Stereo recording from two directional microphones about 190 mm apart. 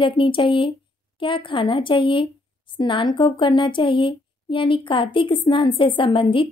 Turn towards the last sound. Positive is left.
turn(degrees=25)  # may be behind; listen again after turning